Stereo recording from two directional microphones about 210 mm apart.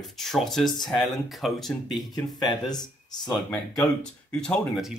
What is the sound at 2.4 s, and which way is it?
Speech, 20° left (ahead or behind).